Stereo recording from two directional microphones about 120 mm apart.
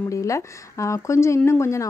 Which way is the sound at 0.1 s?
25° left (ahead or behind).